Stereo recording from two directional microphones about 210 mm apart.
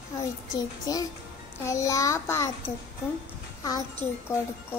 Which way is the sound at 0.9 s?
20° left (ahead or behind).